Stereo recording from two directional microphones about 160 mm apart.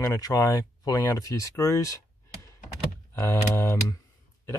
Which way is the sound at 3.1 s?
15° left (ahead or behind).